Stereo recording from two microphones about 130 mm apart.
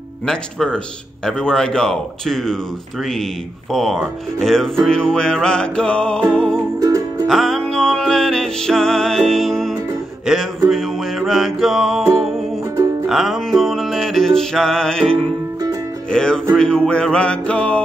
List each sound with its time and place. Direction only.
0.3 s a man's voice: 5° left (ahead or behind)
6.8 s music: 30° right (ahead or behind)
7.2 s music: centre (ahead or behind)
10.2 s speech: centre (ahead or behind)
10.7 s music: centre (ahead or behind)
16.1 s a man's voice: 5° left (ahead or behind)
16.5 s music: 5° left (ahead or behind)